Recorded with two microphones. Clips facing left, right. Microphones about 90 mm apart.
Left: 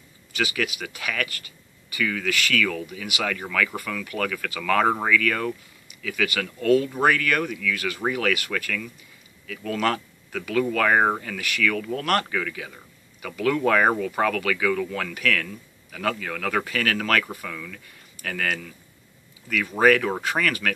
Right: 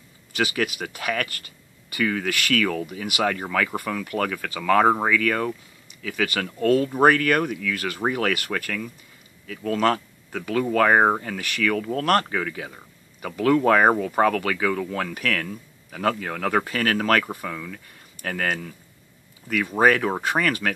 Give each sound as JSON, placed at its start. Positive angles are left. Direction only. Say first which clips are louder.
{"t": 0.3, "sound": "speech", "louder": "right 2 dB", "side_deg": -45}
{"t": 3.3, "sound": "speech", "louder": "right 1 dB", "side_deg": -30}
{"t": 5.9, "sound": "speech", "louder": "even", "side_deg": -35}
{"t": 9.5, "sound": "speech", "louder": "right 3 dB", "side_deg": -30}